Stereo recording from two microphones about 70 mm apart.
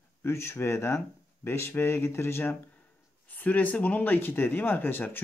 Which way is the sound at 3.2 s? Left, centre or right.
Left.